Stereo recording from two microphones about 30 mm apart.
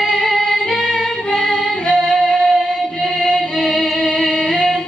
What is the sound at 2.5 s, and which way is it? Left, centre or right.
Music, centre.